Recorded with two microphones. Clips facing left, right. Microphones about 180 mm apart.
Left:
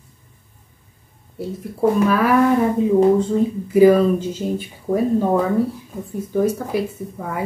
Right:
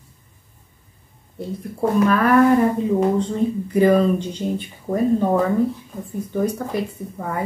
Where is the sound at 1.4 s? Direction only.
5° left (ahead or behind).